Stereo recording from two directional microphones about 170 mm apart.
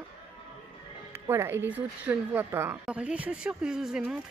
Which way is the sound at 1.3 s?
15° right (ahead or behind).